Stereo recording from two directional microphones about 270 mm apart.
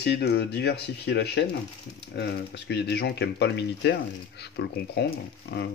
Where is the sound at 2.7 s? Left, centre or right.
Left.